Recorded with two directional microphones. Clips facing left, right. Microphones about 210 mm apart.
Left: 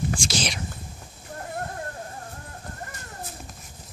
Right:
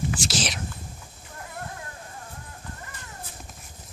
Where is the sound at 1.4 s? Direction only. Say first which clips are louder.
Left 5 dB; 45° left (ahead or behind).